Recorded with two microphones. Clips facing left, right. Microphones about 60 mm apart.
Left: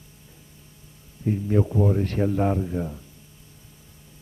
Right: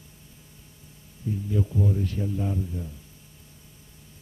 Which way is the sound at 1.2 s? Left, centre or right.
Left.